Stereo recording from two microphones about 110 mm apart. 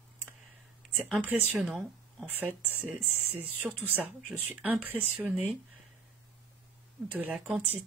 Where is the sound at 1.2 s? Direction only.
15° right (ahead or behind).